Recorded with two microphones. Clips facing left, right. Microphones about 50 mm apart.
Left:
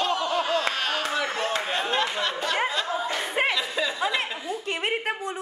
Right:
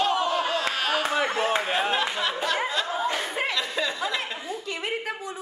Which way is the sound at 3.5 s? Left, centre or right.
Centre.